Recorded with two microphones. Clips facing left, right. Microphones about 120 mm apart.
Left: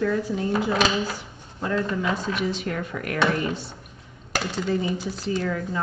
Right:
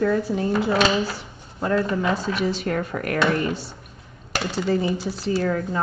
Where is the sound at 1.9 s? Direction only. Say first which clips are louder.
Right 3 dB; 35° right (ahead or behind).